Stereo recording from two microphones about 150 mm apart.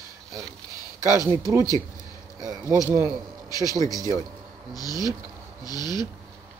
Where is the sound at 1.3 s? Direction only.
20° right (ahead or behind).